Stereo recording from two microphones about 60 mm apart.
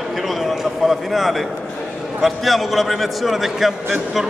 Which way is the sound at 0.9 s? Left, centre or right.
Centre.